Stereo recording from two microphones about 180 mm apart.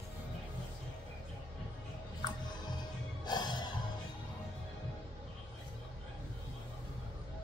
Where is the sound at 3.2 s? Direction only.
25° left (ahead or behind).